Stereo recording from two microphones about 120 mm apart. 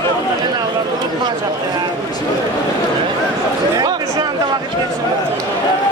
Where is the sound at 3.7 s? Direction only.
30° right (ahead or behind).